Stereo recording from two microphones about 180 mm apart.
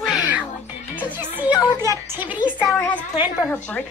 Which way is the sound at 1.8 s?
15° right (ahead or behind).